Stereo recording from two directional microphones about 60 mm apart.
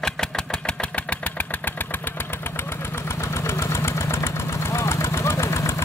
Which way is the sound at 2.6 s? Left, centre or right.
Left.